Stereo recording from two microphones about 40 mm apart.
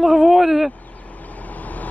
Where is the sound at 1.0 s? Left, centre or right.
Left.